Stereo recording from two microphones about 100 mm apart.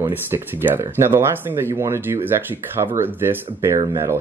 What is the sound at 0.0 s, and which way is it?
Speech, 20° right (ahead or behind).